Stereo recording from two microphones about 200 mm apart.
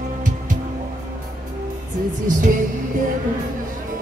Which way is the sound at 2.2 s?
40° right (ahead or behind).